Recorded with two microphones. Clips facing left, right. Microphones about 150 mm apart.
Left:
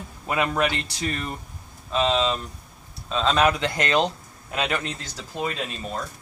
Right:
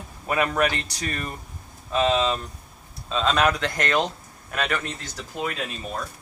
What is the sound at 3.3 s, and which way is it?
Speech, 5° left (ahead or behind).